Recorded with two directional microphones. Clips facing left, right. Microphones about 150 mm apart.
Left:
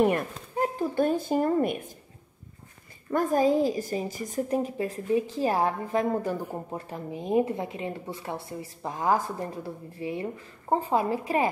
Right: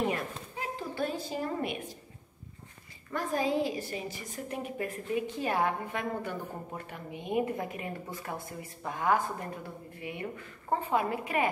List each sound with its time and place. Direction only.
0.0 s speech: 50° left (ahead or behind)
3.1 s a woman's voice: 45° left (ahead or behind)